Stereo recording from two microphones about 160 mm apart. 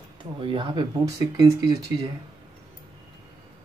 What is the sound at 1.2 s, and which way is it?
Speech, 20° right (ahead or behind).